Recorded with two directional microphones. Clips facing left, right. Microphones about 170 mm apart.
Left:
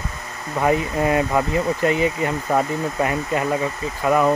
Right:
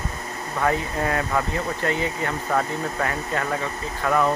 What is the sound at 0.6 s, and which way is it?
Speech, 15° left (ahead or behind).